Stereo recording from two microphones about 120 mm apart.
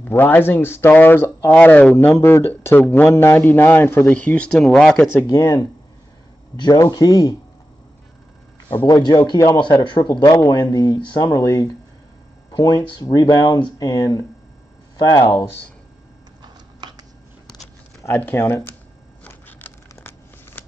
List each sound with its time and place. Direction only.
0.0 s speech: 15° left (ahead or behind)
2.1 s speech: 20° left (ahead or behind)
4.0 s speech: 10° left (ahead or behind)
5.2 s speech: 25° left (ahead or behind)
8.8 s speech: 30° left (ahead or behind)
10.2 s speech: 30° left (ahead or behind)
18.0 s speech: 20° left (ahead or behind)
19.2 s scissors: 15° left (ahead or behind)